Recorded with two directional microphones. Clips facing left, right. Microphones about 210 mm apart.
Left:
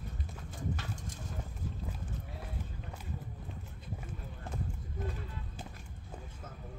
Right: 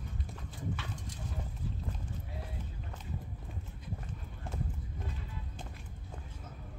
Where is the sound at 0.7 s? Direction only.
45° left (ahead or behind).